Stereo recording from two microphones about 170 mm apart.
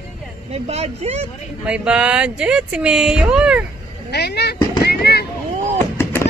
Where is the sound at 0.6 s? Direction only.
40° right (ahead or behind).